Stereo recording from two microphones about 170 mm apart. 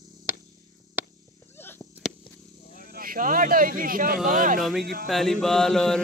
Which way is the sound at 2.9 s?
55° right (ahead or behind).